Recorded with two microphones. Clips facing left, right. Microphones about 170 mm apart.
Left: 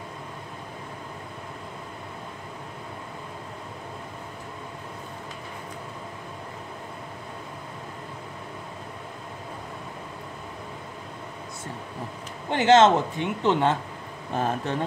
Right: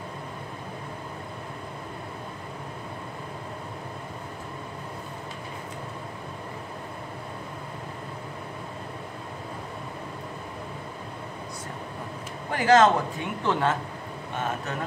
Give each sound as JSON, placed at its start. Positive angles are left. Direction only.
{"t": 12.4, "sound": "a man's voice", "side_deg": 25}
{"t": 14.3, "sound": "a man's voice", "side_deg": 30}